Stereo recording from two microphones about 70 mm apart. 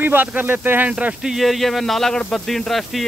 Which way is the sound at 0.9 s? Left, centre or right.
Centre.